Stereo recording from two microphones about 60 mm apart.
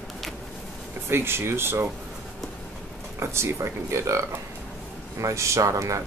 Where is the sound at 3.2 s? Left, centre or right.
Right.